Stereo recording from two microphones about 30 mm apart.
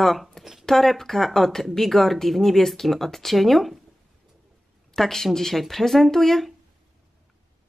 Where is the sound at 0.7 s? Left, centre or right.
Centre.